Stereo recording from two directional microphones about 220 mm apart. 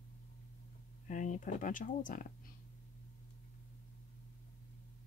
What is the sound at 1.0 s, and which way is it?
Speech, 35° left (ahead or behind).